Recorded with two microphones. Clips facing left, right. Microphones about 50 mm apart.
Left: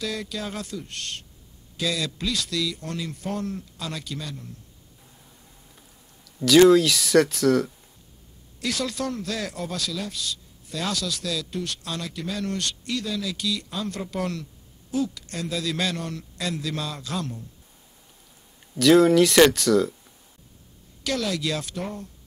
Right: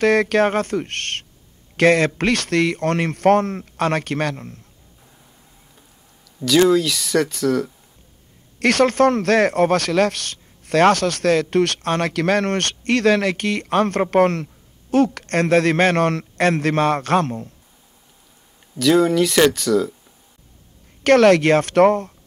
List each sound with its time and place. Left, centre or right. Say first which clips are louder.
0.0 s speech: right 15 dB; right
6.2 s speech: left 1 dB; centre
8.5 s speech: right 13 dB; right
12.1 s speech: right 10 dB; right
18.8 s speech: even; centre
21.0 s speech: right 15 dB; right